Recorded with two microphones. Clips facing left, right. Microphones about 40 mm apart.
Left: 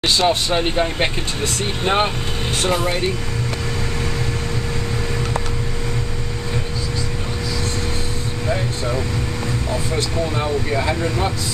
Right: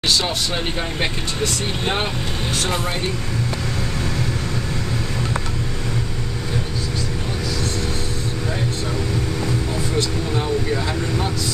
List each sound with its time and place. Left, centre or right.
0.2 s speech: left